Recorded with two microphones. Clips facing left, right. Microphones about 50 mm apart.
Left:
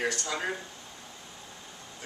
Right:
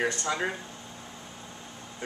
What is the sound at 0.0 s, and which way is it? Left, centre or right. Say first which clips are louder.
Speech: right 3 dB; right.